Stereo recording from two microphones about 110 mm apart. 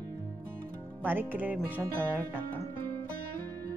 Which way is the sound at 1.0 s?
15° right (ahead or behind).